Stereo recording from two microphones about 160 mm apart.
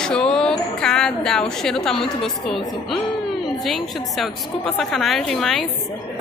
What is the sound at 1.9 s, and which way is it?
A woman's voice, 5° left (ahead or behind).